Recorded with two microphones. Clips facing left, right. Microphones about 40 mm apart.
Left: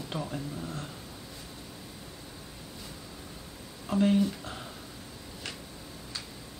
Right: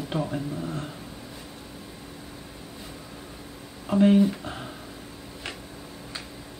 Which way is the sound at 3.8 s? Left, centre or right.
Centre.